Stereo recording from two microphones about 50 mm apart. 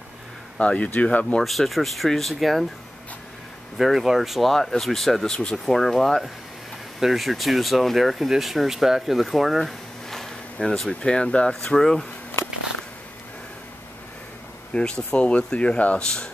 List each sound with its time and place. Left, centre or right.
0.6 s speech: left
1.4 s speech: centre
3.7 s speech: centre
7.0 s speech: centre
10.9 s speech: centre
11.6 s speech: centre
14.7 s speech: centre